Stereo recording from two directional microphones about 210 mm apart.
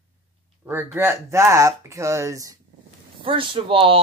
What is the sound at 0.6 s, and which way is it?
Speech, 10° right (ahead or behind).